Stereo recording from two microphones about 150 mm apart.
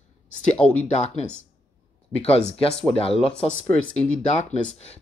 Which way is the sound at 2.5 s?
40° left (ahead or behind).